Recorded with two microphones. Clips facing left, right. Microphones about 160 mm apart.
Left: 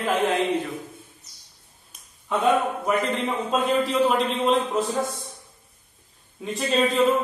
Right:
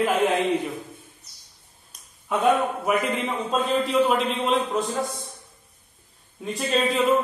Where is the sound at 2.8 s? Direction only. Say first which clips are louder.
Even; 10° right (ahead or behind).